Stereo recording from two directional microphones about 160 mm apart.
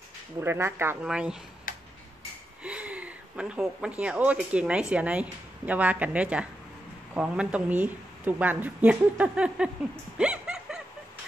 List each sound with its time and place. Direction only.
0.4 s speech: 15° right (ahead or behind)
1.0 s speech: 5° right (ahead or behind)
1.7 s tick-tock: 60° left (ahead or behind)
2.6 s speech: 10° right (ahead or behind)
10.1 s snicker: 5° right (ahead or behind)